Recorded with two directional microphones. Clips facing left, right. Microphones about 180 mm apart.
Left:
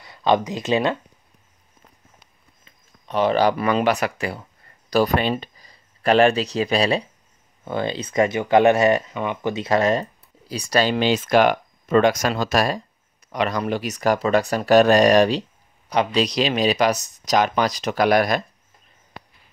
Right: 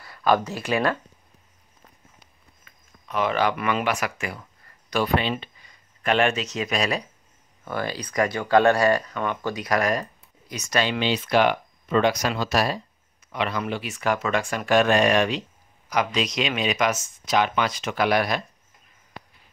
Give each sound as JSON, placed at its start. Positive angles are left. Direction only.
{"t": 0.0, "sound": "a sound", "side_deg": 25}
{"t": 0.4, "sound": "speech", "side_deg": 15}
{"t": 2.6, "sound": "speech", "side_deg": 30}